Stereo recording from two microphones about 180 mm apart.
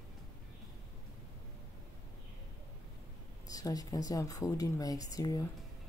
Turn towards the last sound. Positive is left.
turn(degrees=20)  # may be behind; listen again after turning